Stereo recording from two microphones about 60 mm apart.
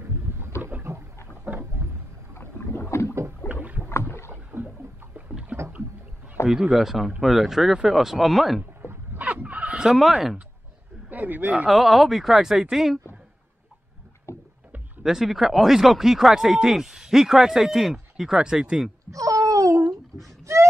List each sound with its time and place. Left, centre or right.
0.6 s rowboat: right
1.3 s a sound: right
2.3 s rowboat: left
3.4 s boat: left
4.3 s rowboat: right
5.1 s boat: right
6.4 s speech: centre
9.2 s a sound: right
9.9 s speech: centre
11.1 s speech: right
11.6 s speech: centre
14.3 s rowboat: left
15.0 s speech: centre
19.0 s a sound: right